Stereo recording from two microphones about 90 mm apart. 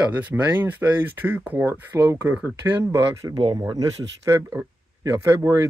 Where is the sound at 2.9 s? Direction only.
40° right (ahead or behind).